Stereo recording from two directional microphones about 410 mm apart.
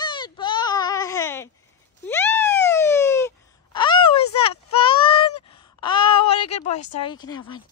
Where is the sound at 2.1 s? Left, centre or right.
Centre.